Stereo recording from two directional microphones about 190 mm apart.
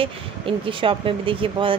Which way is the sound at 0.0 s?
25° right (ahead or behind).